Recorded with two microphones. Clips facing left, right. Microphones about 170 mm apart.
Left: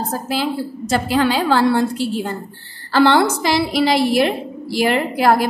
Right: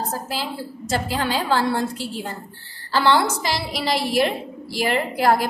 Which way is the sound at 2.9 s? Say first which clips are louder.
Left 5 dB; 60° left (ahead or behind).